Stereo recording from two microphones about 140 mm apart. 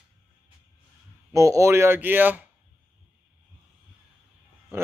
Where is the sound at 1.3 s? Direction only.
20° right (ahead or behind).